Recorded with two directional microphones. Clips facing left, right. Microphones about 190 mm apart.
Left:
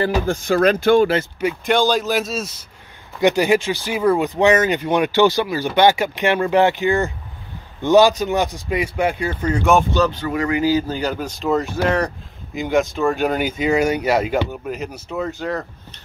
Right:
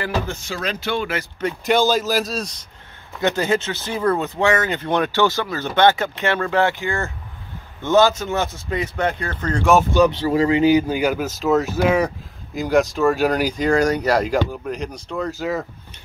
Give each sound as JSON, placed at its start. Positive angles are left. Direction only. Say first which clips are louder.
{"t": 0.3, "sound": "speech", "louder": "left 11 dB", "side_deg": 55}
{"t": 1.7, "sound": "speech", "louder": "even", "side_deg": -5}
{"t": 3.2, "sound": "speech", "louder": "left 4 dB", "side_deg": 15}
{"t": 10.1, "sound": "speech", "louder": "right 4 dB", "side_deg": -30}